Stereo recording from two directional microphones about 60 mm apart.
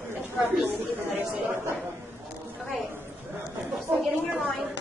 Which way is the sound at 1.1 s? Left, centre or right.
Right.